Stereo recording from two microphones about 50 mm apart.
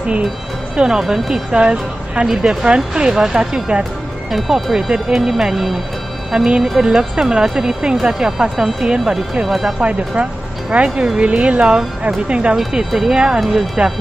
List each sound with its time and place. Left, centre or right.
0.7 s speech: centre
1.5 s a woman's voice: centre
4.3 s speech: centre
9.8 s speech: right
12.5 s speech: centre